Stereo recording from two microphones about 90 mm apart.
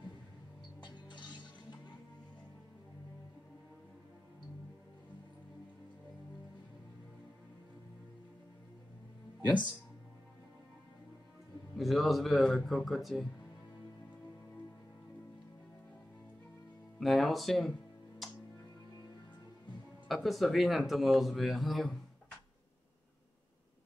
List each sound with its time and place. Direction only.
0.7 s music: 60° left (ahead or behind)
11.7 s speech: centre (ahead or behind)
17.0 s speech: centre (ahead or behind)
18.2 s music: centre (ahead or behind)
20.1 s speech: centre (ahead or behind)